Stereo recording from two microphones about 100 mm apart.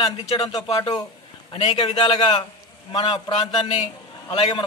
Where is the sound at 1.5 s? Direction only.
45° left (ahead or behind).